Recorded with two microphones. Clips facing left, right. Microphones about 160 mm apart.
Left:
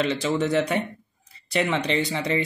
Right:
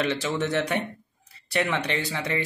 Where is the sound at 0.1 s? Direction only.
15° left (ahead or behind).